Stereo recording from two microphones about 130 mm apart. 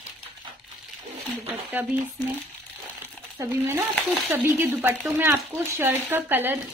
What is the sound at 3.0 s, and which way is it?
Crumpling, 20° right (ahead or behind).